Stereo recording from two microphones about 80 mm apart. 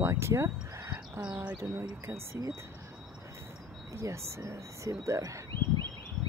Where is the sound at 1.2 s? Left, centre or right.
Centre.